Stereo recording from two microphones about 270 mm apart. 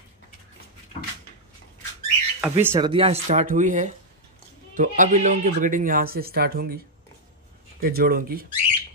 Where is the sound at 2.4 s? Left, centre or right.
Centre; by 6.8 s right.